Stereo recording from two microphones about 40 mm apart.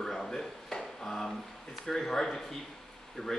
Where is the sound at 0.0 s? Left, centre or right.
Centre.